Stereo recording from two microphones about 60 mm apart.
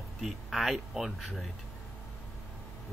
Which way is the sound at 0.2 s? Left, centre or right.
Centre.